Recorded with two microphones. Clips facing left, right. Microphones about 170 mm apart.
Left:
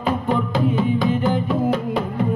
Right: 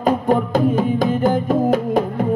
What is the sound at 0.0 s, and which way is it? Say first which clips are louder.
Music: right 4 dB; 45° right (ahead or behind).